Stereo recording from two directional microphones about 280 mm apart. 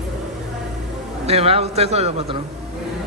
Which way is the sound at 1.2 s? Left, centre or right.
Right.